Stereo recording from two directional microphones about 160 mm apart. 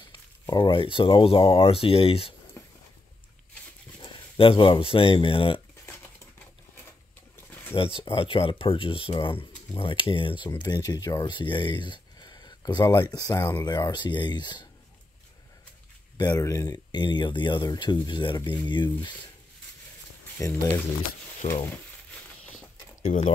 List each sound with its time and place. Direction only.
0.0 s speech: 30° left (ahead or behind)
2.6 s a sound: 20° left (ahead or behind)
4.0 s speech: 30° left (ahead or behind)
7.3 s pigeon: 15° left (ahead or behind)
7.7 s speech: 35° left (ahead or behind)
16.2 s speech: 25° left (ahead or behind)
20.3 s speech: 20° left (ahead or behind)
21.4 s speech: 50° left (ahead or behind)
23.0 s speech: 45° left (ahead or behind)